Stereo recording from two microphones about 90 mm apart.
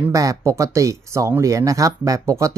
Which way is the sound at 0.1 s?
40° right (ahead or behind).